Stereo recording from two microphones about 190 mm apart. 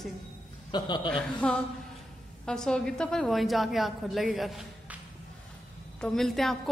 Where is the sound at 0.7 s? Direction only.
25° left (ahead or behind).